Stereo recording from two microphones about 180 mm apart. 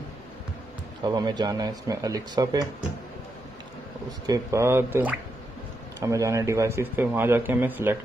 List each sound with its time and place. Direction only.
1.0 s speech: 25° right (ahead or behind)
4.3 s speech: 15° right (ahead or behind)